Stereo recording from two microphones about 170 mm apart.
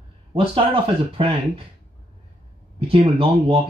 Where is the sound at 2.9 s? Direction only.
30° right (ahead or behind).